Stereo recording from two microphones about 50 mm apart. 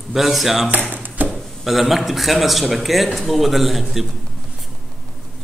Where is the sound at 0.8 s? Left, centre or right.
Right.